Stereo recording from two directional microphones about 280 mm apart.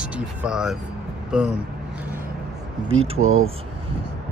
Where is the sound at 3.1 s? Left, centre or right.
Right.